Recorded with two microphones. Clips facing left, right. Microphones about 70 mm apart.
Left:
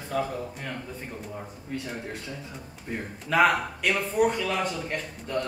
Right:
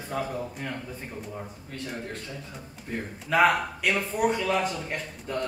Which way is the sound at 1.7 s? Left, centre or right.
Centre.